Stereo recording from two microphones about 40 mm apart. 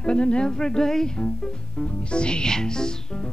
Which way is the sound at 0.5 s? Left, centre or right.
Centre.